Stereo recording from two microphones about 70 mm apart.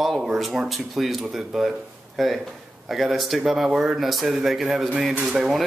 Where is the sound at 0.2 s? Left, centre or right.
Centre.